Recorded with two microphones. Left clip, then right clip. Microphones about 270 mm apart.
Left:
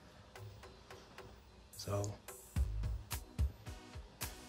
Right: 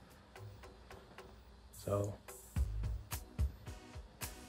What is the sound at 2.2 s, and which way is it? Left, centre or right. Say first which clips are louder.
Music: even; left.